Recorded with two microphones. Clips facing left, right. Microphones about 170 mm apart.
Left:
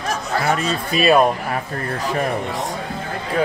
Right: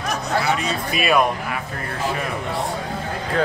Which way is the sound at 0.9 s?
30° left (ahead or behind).